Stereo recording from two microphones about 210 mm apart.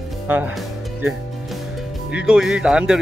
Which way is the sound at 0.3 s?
10° right (ahead or behind).